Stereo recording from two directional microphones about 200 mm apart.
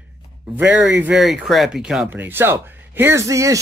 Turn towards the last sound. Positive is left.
turn(degrees=-15)  # may be behind; listen again after turning